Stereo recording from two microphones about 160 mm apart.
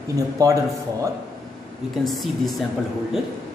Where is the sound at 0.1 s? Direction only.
20° right (ahead or behind).